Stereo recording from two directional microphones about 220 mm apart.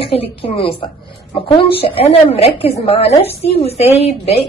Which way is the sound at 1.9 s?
25° left (ahead or behind).